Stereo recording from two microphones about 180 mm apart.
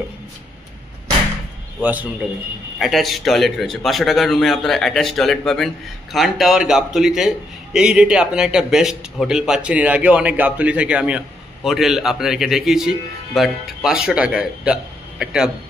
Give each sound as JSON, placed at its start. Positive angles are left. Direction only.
{"t": 1.8, "sound": "a man's voice", "side_deg": -10}